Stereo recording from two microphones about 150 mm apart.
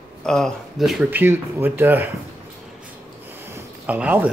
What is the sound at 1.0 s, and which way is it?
Speech, 15° right (ahead or behind).